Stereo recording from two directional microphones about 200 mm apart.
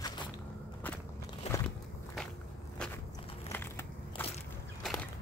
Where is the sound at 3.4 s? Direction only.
10° left (ahead or behind).